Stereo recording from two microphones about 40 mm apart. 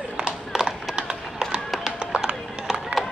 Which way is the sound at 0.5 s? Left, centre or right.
Centre.